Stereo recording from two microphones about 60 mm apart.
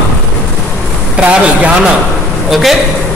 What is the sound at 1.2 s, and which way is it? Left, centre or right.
Speech, centre.